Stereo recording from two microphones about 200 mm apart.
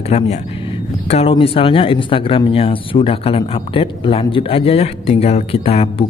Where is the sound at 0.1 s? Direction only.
35° left (ahead or behind).